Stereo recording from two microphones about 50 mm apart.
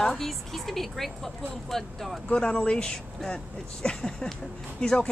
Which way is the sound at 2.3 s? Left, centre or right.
Centre.